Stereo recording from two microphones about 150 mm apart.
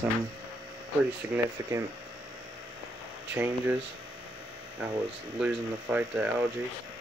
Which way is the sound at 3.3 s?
15° right (ahead or behind).